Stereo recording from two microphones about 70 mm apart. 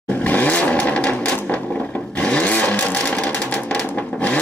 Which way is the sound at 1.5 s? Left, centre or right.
Left.